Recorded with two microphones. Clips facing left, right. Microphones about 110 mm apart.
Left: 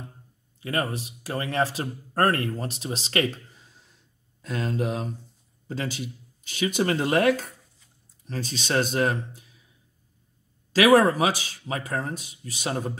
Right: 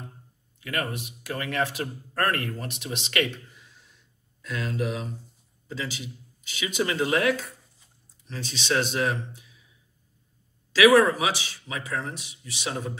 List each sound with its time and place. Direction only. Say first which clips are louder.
0.6 s speech: left 3 dB; 30° left (ahead or behind)
11.0 s speech: left 1 dB; 45° left (ahead or behind)